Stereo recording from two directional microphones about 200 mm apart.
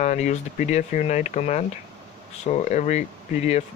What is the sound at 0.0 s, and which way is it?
Speech, 35° left (ahead or behind).